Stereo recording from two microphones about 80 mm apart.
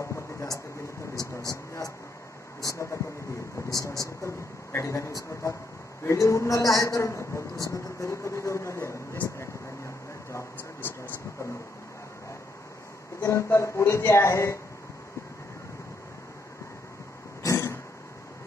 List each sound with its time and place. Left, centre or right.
0.0 s a sound: left
1.5 s speech: left
13.2 s speech: left
17.4 s throat clearing: left